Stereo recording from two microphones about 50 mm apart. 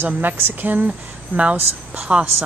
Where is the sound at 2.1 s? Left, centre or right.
Centre.